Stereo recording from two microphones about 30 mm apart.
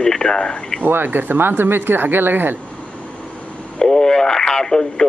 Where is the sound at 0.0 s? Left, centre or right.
Left.